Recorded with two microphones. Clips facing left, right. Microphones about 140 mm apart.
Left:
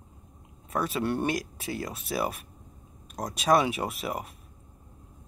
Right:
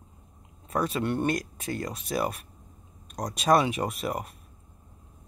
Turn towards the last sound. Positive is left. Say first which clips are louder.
# right 2 dB
turn(degrees=0)  # may be behind; listen again after turning